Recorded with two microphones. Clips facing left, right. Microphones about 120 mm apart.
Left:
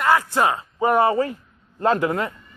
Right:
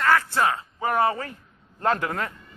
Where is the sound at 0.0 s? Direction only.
15° left (ahead or behind).